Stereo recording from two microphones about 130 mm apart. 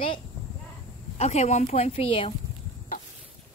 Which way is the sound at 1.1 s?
55° left (ahead or behind).